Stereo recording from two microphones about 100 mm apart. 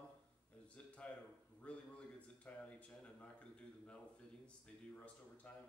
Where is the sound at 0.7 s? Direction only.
10° left (ahead or behind).